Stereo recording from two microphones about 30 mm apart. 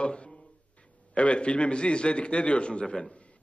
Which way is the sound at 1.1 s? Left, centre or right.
Left.